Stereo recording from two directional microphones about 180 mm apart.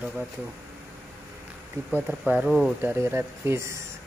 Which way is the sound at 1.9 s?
10° right (ahead or behind).